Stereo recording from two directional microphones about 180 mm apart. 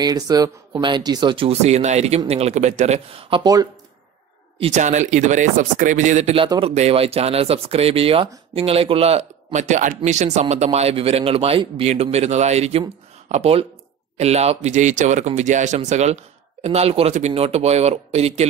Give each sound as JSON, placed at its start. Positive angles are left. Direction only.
{"t": 0.0, "sound": "speech", "side_deg": -20}
{"t": 4.6, "sound": "speech", "side_deg": -40}